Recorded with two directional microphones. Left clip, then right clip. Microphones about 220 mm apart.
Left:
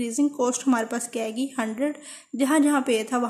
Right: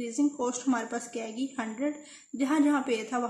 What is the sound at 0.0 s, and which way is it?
A woman's voice, 45° left (ahead or behind).